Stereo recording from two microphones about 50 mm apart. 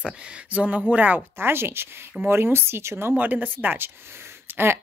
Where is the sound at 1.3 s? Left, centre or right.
Right.